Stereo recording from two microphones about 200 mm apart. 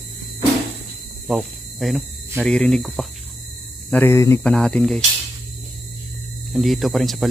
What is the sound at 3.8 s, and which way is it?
Speech, 10° left (ahead or behind).